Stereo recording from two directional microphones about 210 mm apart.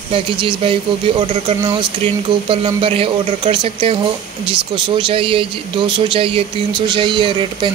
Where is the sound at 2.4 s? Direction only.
25° right (ahead or behind).